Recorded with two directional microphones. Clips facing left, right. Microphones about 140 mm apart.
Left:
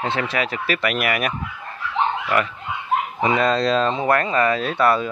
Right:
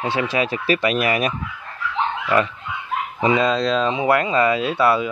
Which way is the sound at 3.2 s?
20° right (ahead or behind).